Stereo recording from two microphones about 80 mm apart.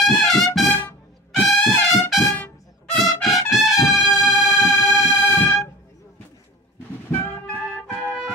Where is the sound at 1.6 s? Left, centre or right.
Centre.